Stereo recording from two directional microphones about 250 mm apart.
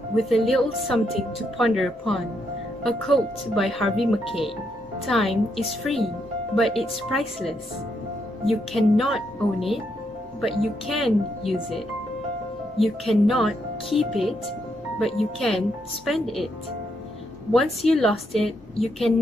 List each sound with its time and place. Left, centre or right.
0.1 s speech: centre
6.5 s speech: centre
15.3 s speech: centre
17.5 s speech: centre